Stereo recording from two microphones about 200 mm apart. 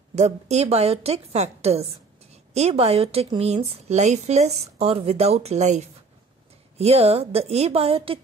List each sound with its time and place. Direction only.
0.1 s a woman's voice: 35° right (ahead or behind)